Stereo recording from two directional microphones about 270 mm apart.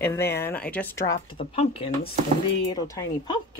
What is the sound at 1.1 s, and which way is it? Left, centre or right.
A woman's voice, left.